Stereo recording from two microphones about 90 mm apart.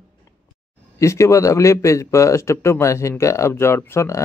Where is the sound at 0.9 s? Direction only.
35° left (ahead or behind).